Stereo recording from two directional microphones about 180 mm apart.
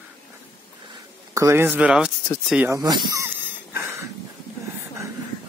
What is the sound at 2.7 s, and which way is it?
Speech, 20° right (ahead or behind).